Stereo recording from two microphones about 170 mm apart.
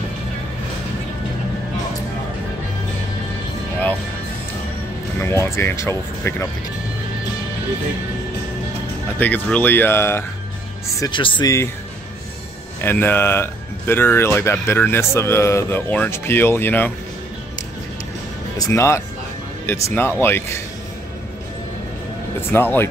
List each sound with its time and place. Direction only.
5.2 s speech: 15° left (ahead or behind)
9.2 s speech: 10° left (ahead or behind)
11.0 s speech: 30° left (ahead or behind)
12.8 s speech: 10° left (ahead or behind)
18.6 s speech: 15° left (ahead or behind)
22.5 s speech: 15° left (ahead or behind)